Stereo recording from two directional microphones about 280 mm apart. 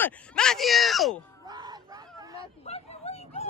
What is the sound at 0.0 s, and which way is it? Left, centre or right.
Speech, centre.